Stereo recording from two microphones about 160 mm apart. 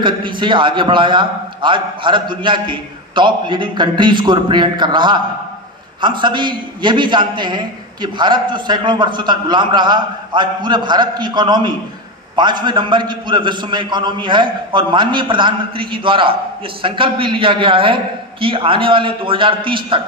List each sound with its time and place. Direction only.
0.0 s a man's voice: 30° right (ahead or behind)